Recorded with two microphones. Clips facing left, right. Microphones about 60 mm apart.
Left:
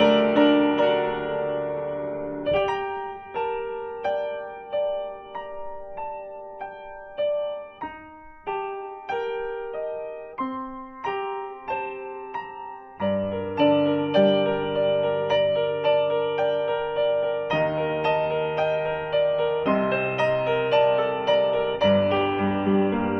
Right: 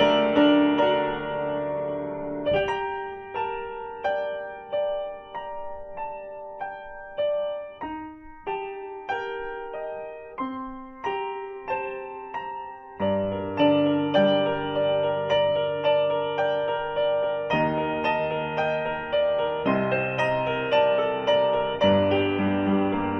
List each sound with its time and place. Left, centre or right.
0.0 s music: centre
2.4 s music: centre
7.2 s music: centre
9.1 s music: centre
13.1 s music: centre
14.1 s music: centre
14.4 s music: centre
17.5 s music: centre
18.2 s music: centre
19.8 s music: centre